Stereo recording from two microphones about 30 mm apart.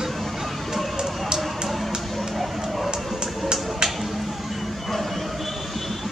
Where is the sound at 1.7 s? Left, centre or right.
Centre.